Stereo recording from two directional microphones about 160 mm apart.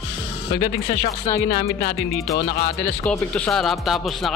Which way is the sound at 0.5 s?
75° left (ahead or behind).